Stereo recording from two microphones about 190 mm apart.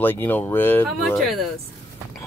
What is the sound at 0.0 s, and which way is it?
Speech, 10° left (ahead or behind).